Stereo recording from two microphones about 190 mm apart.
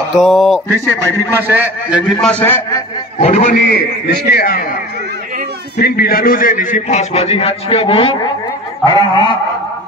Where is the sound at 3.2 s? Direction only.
40° left (ahead or behind).